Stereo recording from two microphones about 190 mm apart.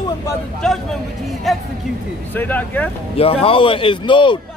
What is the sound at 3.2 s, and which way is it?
Speech, 30° left (ahead or behind).